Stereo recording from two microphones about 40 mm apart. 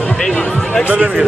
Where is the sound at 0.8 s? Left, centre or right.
Right.